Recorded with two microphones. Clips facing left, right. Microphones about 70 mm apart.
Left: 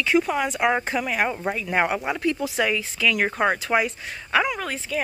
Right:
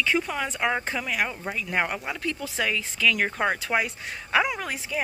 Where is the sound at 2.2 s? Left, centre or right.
Centre.